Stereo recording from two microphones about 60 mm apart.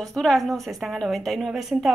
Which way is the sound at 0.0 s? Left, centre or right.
Centre.